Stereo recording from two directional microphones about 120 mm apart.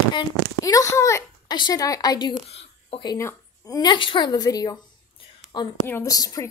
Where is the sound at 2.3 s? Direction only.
60° left (ahead or behind).